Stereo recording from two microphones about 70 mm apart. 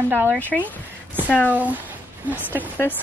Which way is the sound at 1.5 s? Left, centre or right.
Right.